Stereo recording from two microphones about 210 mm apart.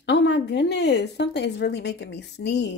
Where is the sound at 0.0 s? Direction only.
55° left (ahead or behind).